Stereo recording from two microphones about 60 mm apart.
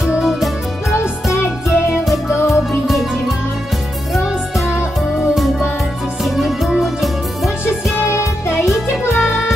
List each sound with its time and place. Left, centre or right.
0.0 s music: centre
0.9 s music: left
2.9 s music: centre
6.2 s music: centre
8.1 s music: left
9.2 s music: centre